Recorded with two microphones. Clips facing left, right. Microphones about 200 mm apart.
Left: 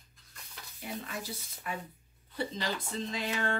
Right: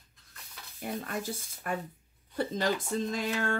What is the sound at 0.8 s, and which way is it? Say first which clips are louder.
Speech: right 5 dB; 50° right (ahead or behind).